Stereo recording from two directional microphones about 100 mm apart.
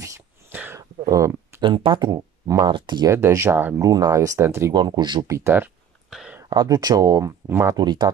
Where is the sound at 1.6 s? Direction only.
55° right (ahead or behind).